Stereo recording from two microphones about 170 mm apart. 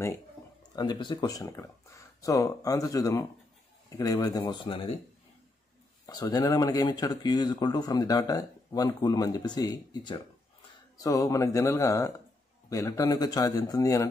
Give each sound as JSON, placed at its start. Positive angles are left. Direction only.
{"t": 0.7, "sound": "speech", "side_deg": 25}
{"t": 6.0, "sound": "speech", "side_deg": 20}